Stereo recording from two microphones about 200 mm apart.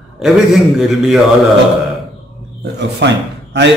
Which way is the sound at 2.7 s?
60° right (ahead or behind).